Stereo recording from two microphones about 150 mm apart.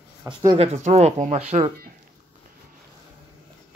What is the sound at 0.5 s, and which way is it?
Speech, 45° right (ahead or behind).